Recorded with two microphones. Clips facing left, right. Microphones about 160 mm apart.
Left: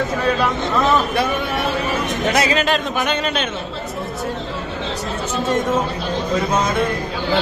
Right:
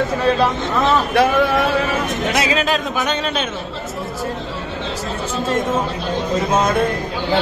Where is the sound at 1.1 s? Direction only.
90° right.